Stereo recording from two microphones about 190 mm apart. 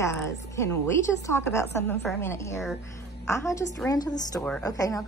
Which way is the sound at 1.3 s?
15° left (ahead or behind).